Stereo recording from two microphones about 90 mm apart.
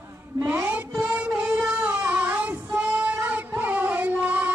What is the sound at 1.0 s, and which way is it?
Child singing, 15° right (ahead or behind).